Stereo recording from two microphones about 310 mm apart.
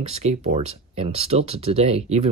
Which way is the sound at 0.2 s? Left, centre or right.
Centre.